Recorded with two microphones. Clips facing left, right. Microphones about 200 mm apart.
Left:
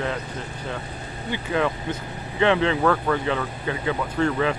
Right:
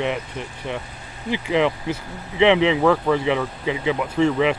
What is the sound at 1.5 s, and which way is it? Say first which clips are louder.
Speech: right 4 dB; 20° right (ahead or behind).